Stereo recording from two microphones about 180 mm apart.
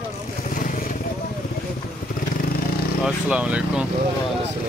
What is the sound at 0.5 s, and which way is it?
Vehicle, 50° left (ahead or behind).